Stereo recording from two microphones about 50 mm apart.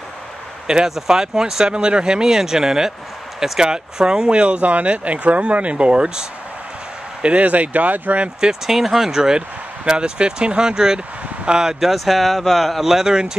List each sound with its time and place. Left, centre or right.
0.7 s speech: centre; by 8.3 s right
8.4 s speech: centre
11.8 s speech: centre